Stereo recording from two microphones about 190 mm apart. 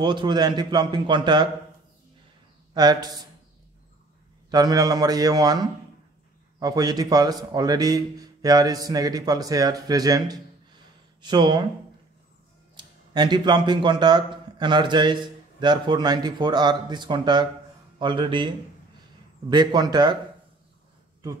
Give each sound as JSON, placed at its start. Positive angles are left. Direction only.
{"t": 0.0, "sound": "speech", "side_deg": -25}
{"t": 2.7, "sound": "speech", "side_deg": -20}
{"t": 4.5, "sound": "speech", "side_deg": -20}
{"t": 12.7, "sound": "speech", "side_deg": -20}
{"t": 19.5, "sound": "speech", "side_deg": -20}